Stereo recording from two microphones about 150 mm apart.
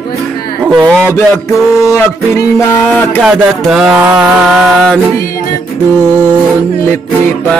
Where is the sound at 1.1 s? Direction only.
20° left (ahead or behind).